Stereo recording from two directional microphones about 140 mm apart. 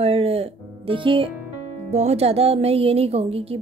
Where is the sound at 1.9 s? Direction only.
50° right (ahead or behind).